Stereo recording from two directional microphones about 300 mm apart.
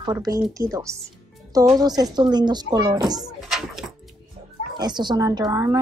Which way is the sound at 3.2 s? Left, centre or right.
Centre.